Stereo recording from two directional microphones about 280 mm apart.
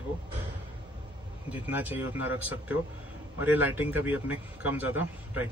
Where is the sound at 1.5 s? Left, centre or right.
Centre.